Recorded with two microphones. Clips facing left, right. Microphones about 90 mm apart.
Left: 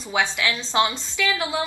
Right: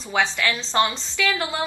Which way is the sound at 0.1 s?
15° left (ahead or behind).